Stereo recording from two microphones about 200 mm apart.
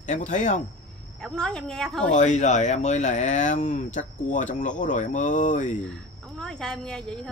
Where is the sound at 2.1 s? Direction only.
35° left (ahead or behind).